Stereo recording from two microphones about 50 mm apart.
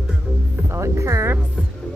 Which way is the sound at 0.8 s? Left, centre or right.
Right.